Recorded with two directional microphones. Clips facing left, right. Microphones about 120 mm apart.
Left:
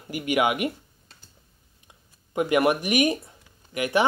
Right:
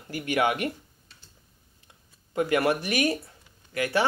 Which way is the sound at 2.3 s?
20° left (ahead or behind).